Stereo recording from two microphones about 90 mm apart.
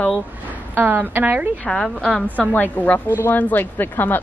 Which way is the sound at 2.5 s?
20° left (ahead or behind).